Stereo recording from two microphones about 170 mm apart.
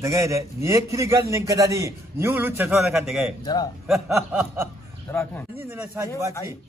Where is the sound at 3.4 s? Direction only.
20° left (ahead or behind).